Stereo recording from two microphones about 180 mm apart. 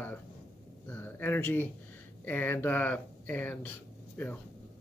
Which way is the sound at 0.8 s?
10° left (ahead or behind).